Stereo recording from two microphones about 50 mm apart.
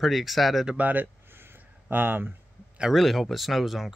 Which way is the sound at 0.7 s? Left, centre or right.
Right.